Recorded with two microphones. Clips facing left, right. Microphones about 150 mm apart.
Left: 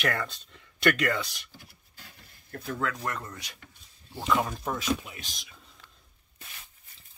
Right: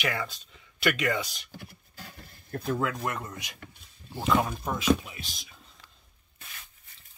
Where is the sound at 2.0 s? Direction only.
50° right (ahead or behind).